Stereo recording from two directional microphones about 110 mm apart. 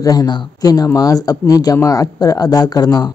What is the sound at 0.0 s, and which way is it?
Speech, 35° left (ahead or behind).